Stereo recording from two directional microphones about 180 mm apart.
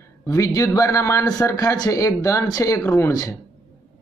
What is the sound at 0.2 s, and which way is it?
Speech, 15° left (ahead or behind).